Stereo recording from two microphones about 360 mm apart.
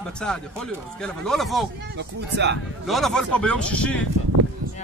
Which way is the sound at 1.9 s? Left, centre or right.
Right.